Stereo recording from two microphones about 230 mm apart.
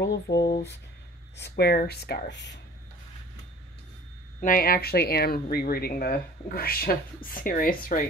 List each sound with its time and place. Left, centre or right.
0.0 s speech: left
1.4 s speech: left
4.4 s speech: left